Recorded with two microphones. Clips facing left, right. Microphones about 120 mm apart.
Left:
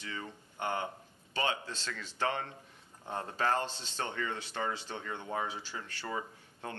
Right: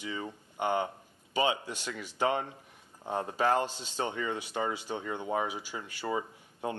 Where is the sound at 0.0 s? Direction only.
15° right (ahead or behind).